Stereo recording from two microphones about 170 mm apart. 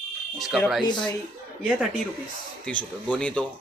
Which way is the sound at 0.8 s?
25° left (ahead or behind).